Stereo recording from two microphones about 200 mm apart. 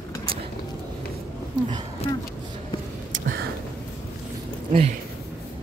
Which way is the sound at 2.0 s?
30° left (ahead or behind).